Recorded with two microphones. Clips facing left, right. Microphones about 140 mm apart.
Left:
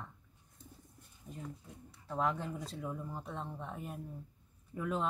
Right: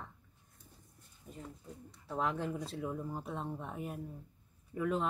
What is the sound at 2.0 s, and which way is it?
Speech, centre (ahead or behind).